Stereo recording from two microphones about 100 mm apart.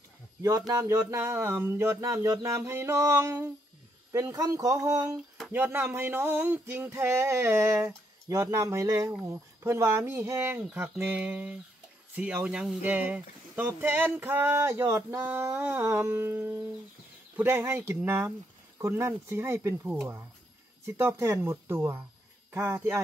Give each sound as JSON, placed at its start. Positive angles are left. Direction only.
{"t": 0.4, "sound": "speech", "side_deg": -35}
{"t": 5.5, "sound": "speech", "side_deg": -20}